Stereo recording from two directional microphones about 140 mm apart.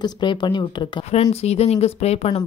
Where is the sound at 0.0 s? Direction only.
35° left (ahead or behind).